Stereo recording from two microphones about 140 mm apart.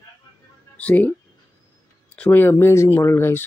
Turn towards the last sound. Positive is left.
turn(degrees=15)  # may be behind; listen again after turning